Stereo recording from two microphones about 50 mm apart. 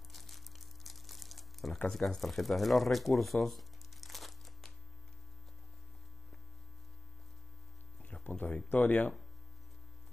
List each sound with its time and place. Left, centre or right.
0.1 s crumpling: centre
1.9 s speech: centre
8.0 s a sound: left
8.6 s speech: left